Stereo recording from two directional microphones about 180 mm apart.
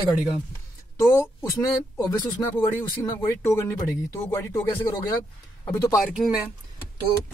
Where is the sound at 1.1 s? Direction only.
15° left (ahead or behind).